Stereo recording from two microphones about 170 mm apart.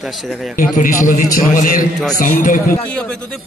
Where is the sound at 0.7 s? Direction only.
50° left (ahead or behind).